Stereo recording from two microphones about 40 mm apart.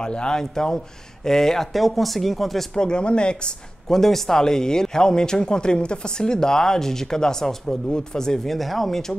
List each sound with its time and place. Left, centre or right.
0.0 s speech: left
1.7 s speech: centre
2.7 s speech: centre
3.9 s speech: centre
8.5 s speech: centre